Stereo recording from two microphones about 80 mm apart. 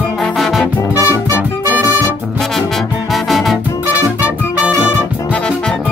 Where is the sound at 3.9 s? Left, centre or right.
Centre.